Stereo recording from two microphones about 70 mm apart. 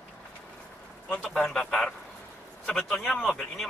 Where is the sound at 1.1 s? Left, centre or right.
Centre.